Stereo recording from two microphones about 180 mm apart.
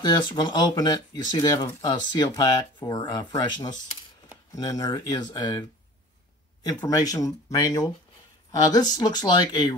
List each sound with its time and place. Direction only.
0.0 s speech: 25° left (ahead or behind)
6.7 s speech: 20° left (ahead or behind)